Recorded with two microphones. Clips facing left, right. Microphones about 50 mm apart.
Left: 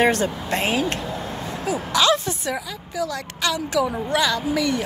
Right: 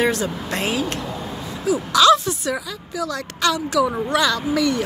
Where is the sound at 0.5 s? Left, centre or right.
Left.